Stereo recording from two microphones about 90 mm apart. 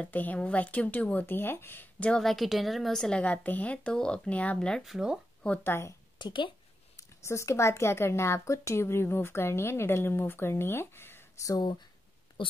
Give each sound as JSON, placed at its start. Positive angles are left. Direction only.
{"t": 0.0, "sound": "a woman's voice", "side_deg": 20}
{"t": 2.0, "sound": "a woman's voice", "side_deg": 5}
{"t": 4.9, "sound": "speech", "side_deg": -5}
{"t": 5.6, "sound": "a woman's voice", "side_deg": 30}
{"t": 6.1, "sound": "speech", "side_deg": 60}
{"t": 7.0, "sound": "a woman's voice", "side_deg": 35}
{"t": 11.4, "sound": "speech", "side_deg": 45}
{"t": 12.4, "sound": "speech", "side_deg": 70}